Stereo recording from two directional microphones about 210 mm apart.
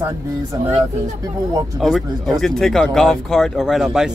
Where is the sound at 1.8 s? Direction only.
Centre (ahead or behind).